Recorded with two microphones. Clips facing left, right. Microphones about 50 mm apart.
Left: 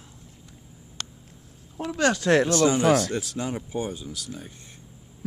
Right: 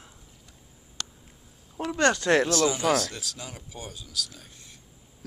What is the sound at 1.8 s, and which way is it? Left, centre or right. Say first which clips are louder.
Speech: even; centre.